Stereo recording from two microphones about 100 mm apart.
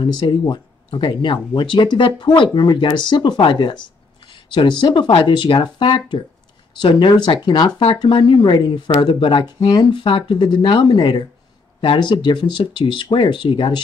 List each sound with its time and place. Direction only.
0.0 s speech: 50° left (ahead or behind)
8.0 s speech: 55° left (ahead or behind)